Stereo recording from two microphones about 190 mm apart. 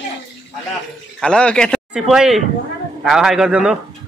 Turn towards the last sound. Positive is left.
turn(degrees=-5)  # may be behind; listen again after turning